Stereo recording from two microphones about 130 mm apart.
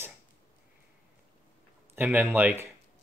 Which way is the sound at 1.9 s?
15° right (ahead or behind).